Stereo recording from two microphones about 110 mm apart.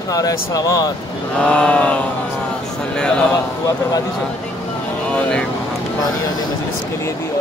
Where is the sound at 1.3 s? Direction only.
5° left (ahead or behind).